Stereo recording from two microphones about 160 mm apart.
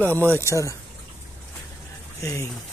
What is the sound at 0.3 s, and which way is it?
Speech, 15° left (ahead or behind).